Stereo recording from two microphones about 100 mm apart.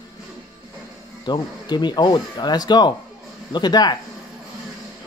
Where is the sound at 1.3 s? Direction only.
45° left (ahead or behind).